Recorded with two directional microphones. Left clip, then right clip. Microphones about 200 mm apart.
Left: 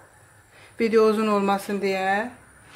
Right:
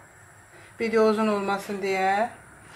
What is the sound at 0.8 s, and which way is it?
Speech, 55° left (ahead or behind).